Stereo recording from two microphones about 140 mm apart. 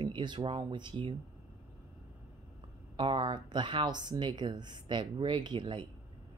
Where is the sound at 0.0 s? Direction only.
35° right (ahead or behind).